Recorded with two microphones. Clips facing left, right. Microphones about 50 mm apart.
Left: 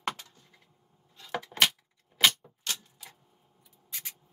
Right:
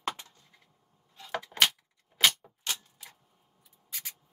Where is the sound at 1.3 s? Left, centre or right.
Centre.